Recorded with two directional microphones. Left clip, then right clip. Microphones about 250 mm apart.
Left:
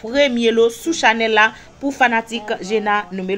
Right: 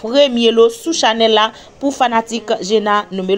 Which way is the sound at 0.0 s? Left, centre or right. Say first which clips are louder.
Right 4 dB; centre.